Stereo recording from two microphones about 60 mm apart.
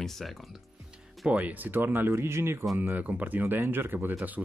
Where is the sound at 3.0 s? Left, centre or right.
Right.